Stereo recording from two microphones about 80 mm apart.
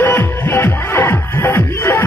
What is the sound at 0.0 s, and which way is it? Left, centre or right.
Music, left.